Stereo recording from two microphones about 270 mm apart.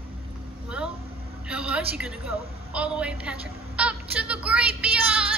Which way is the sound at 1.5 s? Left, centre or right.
Centre.